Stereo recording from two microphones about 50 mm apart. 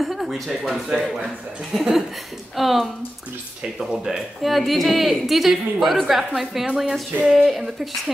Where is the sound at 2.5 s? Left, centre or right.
Centre.